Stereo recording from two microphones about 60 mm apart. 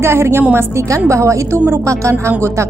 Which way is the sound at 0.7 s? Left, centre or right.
Right.